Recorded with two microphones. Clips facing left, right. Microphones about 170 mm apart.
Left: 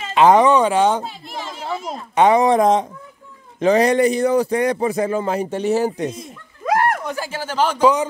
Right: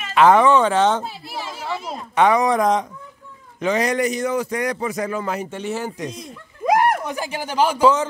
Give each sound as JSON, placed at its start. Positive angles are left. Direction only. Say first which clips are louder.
{"t": 0.0, "sound": "speech", "louder": "left 1 dB", "side_deg": 20}
{"t": 1.0, "sound": "speech", "louder": "even", "side_deg": -5}
{"t": 2.1, "sound": "a man's voice", "louder": "left 3 dB", "side_deg": 25}
{"t": 6.6, "sound": "speech", "louder": "right 1 dB", "side_deg": -15}
{"t": 7.8, "sound": "speech", "louder": "left 1 dB", "side_deg": 15}